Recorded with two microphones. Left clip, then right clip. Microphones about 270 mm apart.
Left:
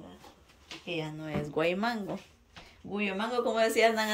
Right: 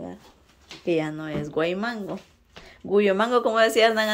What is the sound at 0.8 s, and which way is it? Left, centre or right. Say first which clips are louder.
Speech: right 11 dB; centre.